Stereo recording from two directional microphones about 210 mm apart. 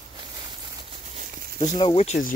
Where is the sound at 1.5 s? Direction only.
25° left (ahead or behind).